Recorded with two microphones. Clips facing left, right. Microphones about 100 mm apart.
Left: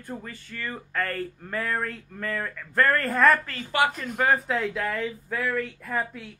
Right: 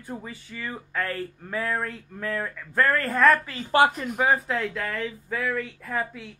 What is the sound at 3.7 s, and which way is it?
Speech, 30° right (ahead or behind).